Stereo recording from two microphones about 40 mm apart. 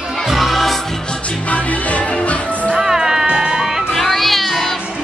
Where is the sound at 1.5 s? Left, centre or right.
Left.